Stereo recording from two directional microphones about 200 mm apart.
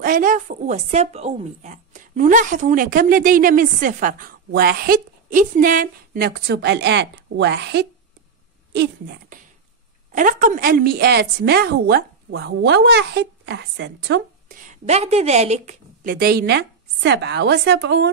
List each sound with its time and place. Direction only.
0.0 s speech: 45° right (ahead or behind)
10.1 s speech: 40° right (ahead or behind)
14.7 s a woman's voice: 35° right (ahead or behind); by 18.1 s 55° right (ahead or behind)